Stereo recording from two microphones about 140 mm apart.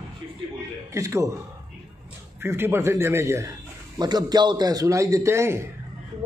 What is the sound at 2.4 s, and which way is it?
A man's voice, 15° right (ahead or behind).